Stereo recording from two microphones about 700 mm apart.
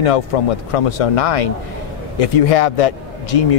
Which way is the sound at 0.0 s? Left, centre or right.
Left.